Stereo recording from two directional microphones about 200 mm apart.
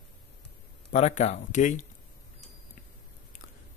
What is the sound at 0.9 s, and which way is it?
Speech, 35° left (ahead or behind).